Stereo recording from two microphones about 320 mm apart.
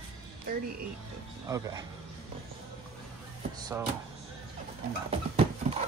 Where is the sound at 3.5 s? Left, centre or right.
Centre.